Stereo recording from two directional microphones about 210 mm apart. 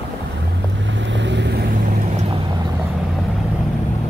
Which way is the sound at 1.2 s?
55° right (ahead or behind).